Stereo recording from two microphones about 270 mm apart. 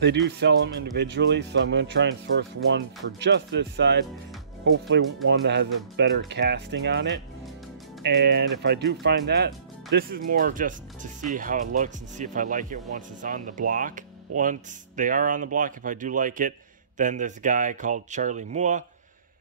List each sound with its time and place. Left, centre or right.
0.0 s speech: right